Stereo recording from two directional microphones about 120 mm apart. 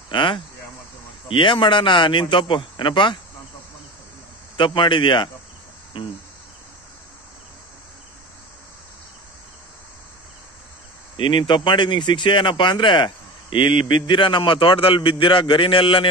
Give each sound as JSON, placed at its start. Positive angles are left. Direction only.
{"t": 0.1, "sound": "a sound", "side_deg": 45}
{"t": 1.3, "sound": "speech", "side_deg": 45}
{"t": 4.6, "sound": "speech", "side_deg": 40}
{"t": 11.1, "sound": "speech", "side_deg": 40}